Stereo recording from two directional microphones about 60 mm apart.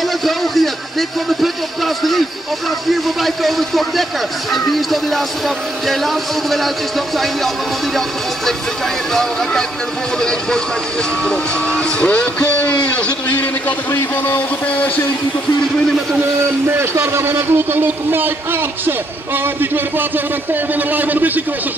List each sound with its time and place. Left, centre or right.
0.2 s speech: centre
2.9 s speech: centre
9.1 s speech: centre
11.2 s speech: centre
14.2 s speech: left
16.6 s a man's voice: right